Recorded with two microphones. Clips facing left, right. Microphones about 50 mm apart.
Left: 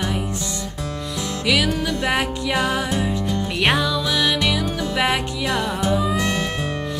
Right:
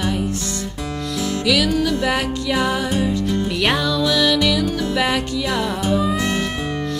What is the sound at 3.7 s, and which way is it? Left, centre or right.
Music, centre.